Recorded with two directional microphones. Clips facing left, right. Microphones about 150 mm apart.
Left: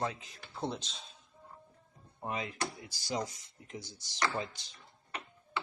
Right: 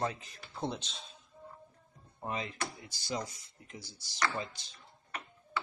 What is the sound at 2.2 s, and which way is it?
Speech, 10° left (ahead or behind).